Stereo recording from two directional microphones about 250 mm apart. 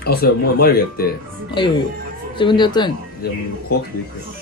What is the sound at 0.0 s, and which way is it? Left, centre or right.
Speech, left.